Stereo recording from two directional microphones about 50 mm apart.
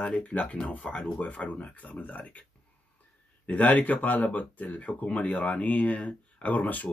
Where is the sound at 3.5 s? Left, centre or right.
Left.